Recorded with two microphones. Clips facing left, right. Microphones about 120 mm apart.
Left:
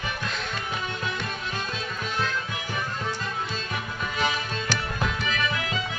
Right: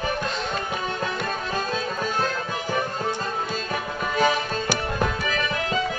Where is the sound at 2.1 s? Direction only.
40° right (ahead or behind).